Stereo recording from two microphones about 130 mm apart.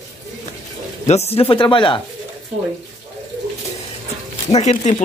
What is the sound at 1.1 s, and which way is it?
Speech, 55° left (ahead or behind).